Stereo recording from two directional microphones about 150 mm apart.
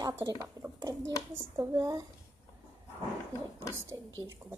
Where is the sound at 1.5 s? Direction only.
20° right (ahead or behind).